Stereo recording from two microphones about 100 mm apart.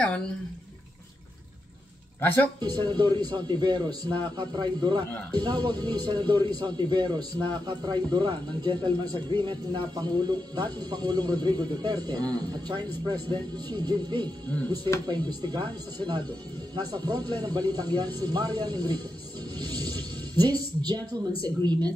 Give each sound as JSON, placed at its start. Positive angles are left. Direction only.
{"t": 2.1, "sound": "speech", "side_deg": 20}
{"t": 2.6, "sound": "a man's voice", "side_deg": -45}